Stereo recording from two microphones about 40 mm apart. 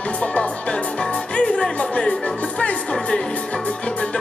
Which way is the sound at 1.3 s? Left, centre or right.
Left.